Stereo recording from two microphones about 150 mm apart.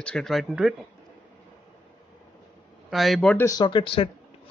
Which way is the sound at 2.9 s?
Centre (ahead or behind).